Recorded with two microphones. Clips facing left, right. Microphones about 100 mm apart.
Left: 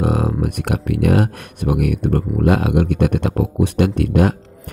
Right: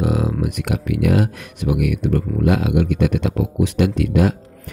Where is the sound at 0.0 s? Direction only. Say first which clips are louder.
Left 1 dB; 45° left (ahead or behind).